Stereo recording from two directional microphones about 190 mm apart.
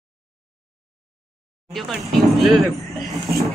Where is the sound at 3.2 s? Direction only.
15° left (ahead or behind).